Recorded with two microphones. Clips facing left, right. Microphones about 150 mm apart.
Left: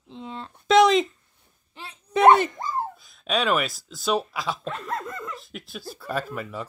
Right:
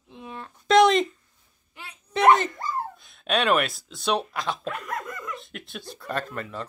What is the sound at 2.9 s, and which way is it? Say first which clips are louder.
Speech: right 1 dB; centre (ahead or behind).